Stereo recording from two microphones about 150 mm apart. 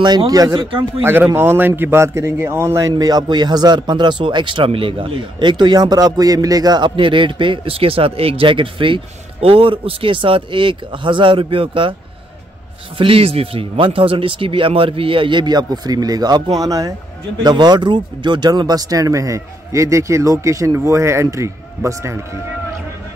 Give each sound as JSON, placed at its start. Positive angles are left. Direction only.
{"t": 0.0, "sound": "speech", "side_deg": -30}
{"t": 0.7, "sound": "speech", "side_deg": -35}
{"t": 1.0, "sound": "a man's voice", "side_deg": -15}
{"t": 12.9, "sound": "speech", "side_deg": -35}